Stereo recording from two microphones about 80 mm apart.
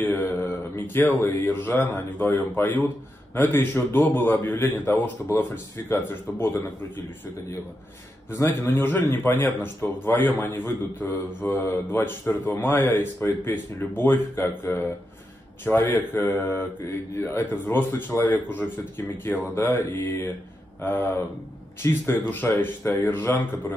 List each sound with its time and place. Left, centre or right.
0.0 s a man's voice: left
8.3 s a man's voice: left
20.8 s a man's voice: left